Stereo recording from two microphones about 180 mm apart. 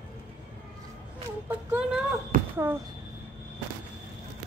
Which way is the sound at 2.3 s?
50° right (ahead or behind).